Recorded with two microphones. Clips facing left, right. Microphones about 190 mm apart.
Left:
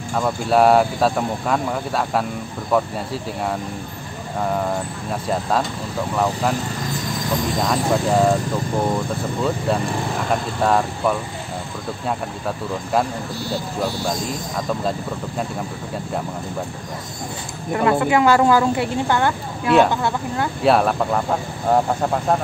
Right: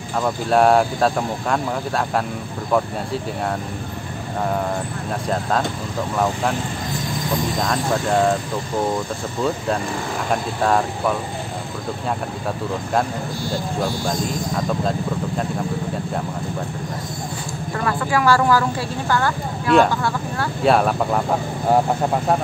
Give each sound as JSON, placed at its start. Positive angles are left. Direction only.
{"t": 0.2, "sound": "speech", "side_deg": 0}
{"t": 7.6, "sound": "speech", "side_deg": 5}
{"t": 10.3, "sound": "speech", "side_deg": 0}
{"t": 17.7, "sound": "speech", "side_deg": 20}
{"t": 20.6, "sound": "speech", "side_deg": 0}